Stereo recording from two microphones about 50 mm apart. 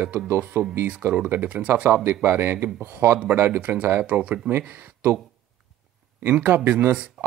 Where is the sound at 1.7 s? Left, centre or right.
Right.